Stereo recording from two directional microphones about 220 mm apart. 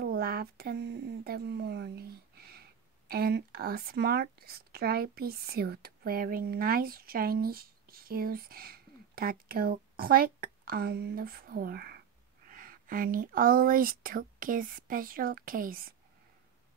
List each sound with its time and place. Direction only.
0.0 s a woman's voice: 45° right (ahead or behind)